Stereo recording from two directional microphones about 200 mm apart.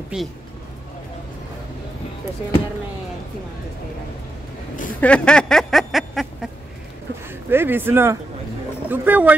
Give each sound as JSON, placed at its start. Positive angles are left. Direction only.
{"t": 0.1, "sound": "speech", "side_deg": -5}
{"t": 5.0, "sound": "speech", "side_deg": 5}
{"t": 7.2, "sound": "a man's voice", "side_deg": -10}